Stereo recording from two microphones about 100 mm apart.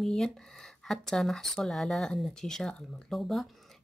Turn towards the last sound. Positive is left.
turn(degrees=0)  # may be behind; listen again after turning